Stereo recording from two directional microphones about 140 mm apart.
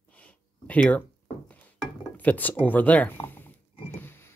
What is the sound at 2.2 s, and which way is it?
Speech, 10° left (ahead or behind).